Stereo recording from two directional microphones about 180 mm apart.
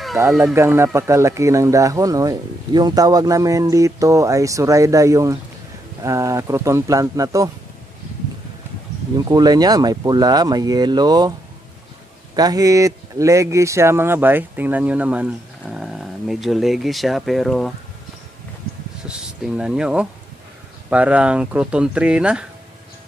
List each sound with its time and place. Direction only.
0.4 s speech: 10° right (ahead or behind)
9.1 s speech: 20° right (ahead or behind)
12.4 s speech: 20° right (ahead or behind); by 17.7 s centre (ahead or behind)
19.0 s speech: 5° right (ahead or behind)